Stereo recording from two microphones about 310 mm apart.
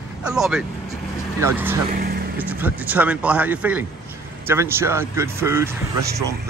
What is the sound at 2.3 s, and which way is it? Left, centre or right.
Speech, centre.